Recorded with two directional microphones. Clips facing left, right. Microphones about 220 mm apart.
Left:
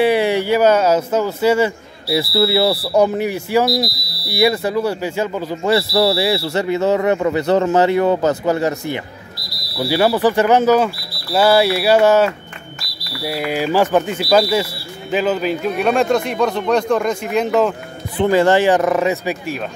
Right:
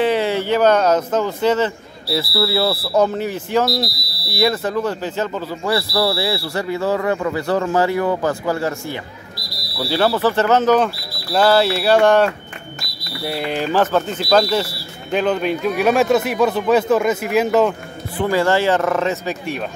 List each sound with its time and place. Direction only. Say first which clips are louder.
0.0 s speech: left 3 dB; 10° left (ahead or behind)
18.1 s speech: left 4 dB; 20° left (ahead or behind)